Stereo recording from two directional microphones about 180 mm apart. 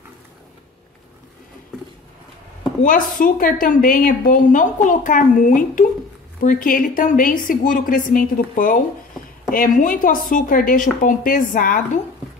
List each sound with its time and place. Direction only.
2.8 s a woman's voice: 50° left (ahead or behind)